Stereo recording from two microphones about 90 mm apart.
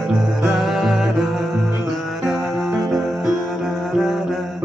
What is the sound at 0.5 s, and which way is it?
Music, 5° right (ahead or behind).